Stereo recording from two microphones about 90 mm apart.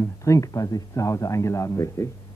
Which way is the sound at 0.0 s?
35° left (ahead or behind).